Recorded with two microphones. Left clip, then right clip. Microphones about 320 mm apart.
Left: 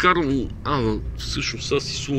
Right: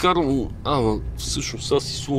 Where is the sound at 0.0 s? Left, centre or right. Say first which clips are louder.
Left 1 dB; centre.